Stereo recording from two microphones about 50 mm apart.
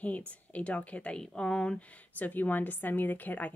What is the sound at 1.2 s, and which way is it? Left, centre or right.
Speech, centre.